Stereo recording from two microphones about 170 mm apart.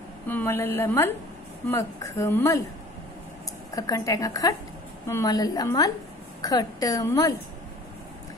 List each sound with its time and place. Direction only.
0.3 s a woman's voice: 10° left (ahead or behind)
3.7 s a woman's voice: 20° left (ahead or behind)